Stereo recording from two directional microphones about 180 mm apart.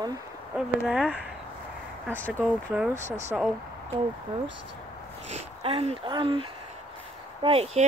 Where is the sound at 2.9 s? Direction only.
40° right (ahead or behind).